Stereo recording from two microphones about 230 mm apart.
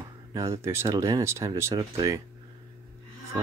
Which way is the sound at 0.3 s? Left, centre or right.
Centre.